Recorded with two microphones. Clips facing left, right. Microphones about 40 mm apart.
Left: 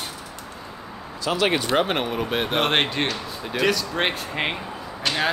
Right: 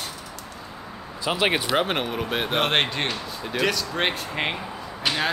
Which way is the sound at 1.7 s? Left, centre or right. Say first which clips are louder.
Left 2 dB; centre.